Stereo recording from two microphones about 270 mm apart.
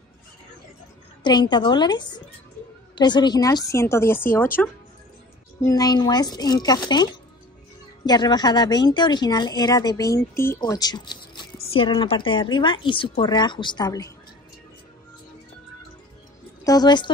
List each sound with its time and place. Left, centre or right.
1.2 s speech: centre
5.6 s speech: centre
16.6 s speech: centre